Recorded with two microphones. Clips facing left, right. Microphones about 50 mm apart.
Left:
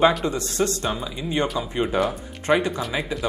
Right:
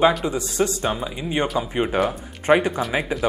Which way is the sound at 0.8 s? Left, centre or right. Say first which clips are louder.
Right 2 dB; centre.